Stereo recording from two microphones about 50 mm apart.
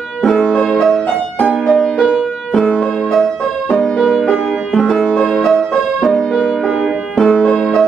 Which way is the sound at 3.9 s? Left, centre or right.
Centre.